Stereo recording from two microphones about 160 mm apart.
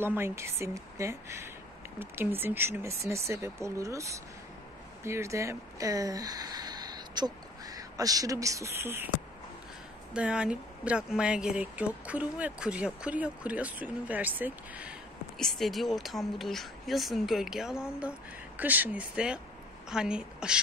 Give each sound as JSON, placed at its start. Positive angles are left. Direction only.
{"t": 0.0, "sound": "speech", "side_deg": -15}
{"t": 10.1, "sound": "speech", "side_deg": -5}
{"t": 15.3, "sound": "speech", "side_deg": 0}